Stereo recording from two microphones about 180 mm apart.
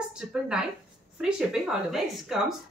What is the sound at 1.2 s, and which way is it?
A woman's voice, 5° right (ahead or behind).